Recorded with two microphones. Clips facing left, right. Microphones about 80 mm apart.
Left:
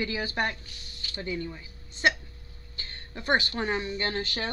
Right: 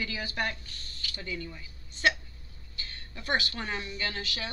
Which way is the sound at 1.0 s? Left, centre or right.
Left.